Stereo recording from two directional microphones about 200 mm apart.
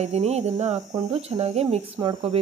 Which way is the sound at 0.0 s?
35° right (ahead or behind).